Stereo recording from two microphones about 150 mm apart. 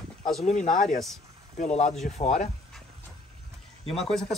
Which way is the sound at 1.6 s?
50° left (ahead or behind).